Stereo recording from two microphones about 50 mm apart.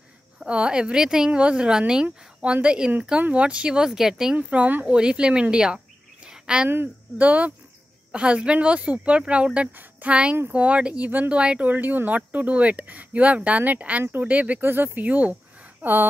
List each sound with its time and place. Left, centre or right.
0.4 s speech: right
4.4 s speech: right
4.8 s speech: centre
6.2 s a sound: centre
7.2 s speech: right
9.7 s a woman's voice: right
11.1 s speech: right
11.3 s speech: right
11.6 s speech: right
14.6 s speech: right
15.0 s speech: right